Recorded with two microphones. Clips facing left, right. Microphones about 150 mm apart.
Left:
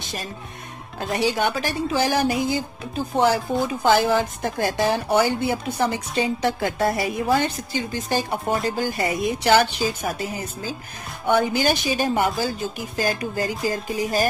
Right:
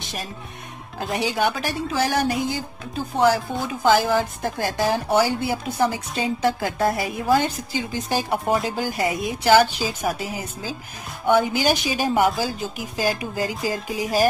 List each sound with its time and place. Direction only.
1.1 s speech: 10° right (ahead or behind)
1.5 s a woman's voice: centre (ahead or behind)
8.5 s a woman's voice: centre (ahead or behind)
8.7 s speech: 10° right (ahead or behind)
9.0 s a woman's voice: centre (ahead or behind)